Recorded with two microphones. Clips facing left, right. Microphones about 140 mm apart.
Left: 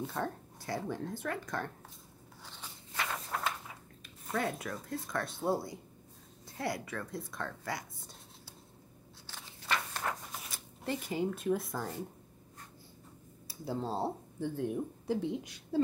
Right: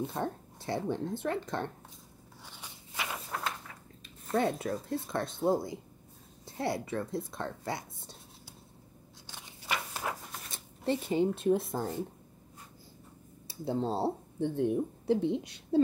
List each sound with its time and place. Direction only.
0.0 s speech: 20° right (ahead or behind)
2.4 s a sound: 10° right (ahead or behind)
4.0 s speech: 25° right (ahead or behind)
9.3 s a sound: 10° right (ahead or behind)
10.5 s speech: 25° right (ahead or behind)
13.5 s speech: 25° right (ahead or behind)